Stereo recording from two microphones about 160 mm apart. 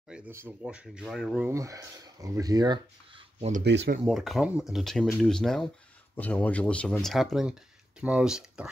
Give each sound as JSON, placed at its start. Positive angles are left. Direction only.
{"t": 0.1, "sound": "speech", "side_deg": -10}
{"t": 1.5, "sound": "speech", "side_deg": -20}
{"t": 3.3, "sound": "speech", "side_deg": -45}
{"t": 3.6, "sound": "speech", "side_deg": -90}
{"t": 4.0, "sound": "speech", "side_deg": 0}